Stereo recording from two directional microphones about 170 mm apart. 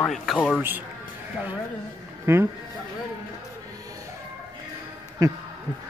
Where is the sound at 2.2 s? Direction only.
15° right (ahead or behind).